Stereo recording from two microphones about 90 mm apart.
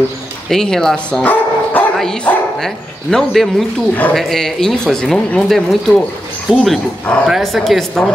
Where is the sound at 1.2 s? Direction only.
20° left (ahead or behind).